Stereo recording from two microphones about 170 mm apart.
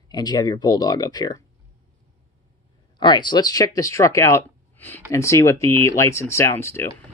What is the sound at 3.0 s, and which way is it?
Speech, 25° left (ahead or behind).